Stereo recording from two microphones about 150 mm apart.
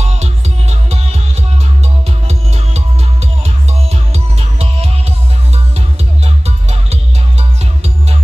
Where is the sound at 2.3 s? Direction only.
45° right (ahead or behind).